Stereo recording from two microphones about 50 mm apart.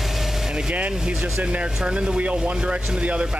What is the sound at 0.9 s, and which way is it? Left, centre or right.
Speech, centre.